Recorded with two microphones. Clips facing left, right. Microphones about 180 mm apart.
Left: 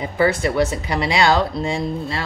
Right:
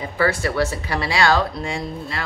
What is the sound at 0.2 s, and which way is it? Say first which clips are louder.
Speech: left 3 dB; 20° left (ahead or behind).